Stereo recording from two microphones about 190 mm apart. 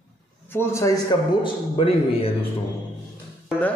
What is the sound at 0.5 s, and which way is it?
Speech, 10° left (ahead or behind).